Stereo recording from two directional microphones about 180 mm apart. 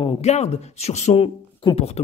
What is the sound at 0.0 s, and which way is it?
Speech, 30° left (ahead or behind).